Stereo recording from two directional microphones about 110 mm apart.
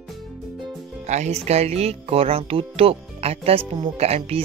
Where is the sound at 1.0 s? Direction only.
90° right.